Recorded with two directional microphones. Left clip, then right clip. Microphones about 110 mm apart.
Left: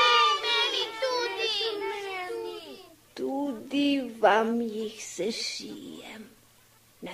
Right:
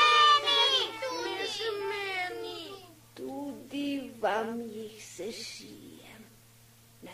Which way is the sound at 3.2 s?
40° right (ahead or behind).